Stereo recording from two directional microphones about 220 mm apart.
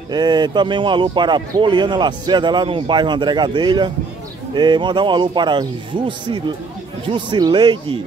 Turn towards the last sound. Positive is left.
turn(degrees=-20)  # may be behind; listen again after turning